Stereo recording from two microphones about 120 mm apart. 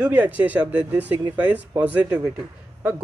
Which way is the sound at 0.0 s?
15° right (ahead or behind).